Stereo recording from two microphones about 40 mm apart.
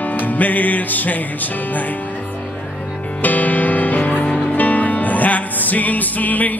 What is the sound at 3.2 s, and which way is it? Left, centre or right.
Music, left.